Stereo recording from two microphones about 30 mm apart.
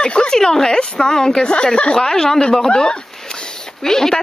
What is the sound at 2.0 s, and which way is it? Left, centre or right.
Speech, centre.